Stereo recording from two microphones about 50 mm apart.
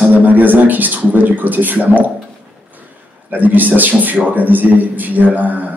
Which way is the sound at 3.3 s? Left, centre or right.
Right.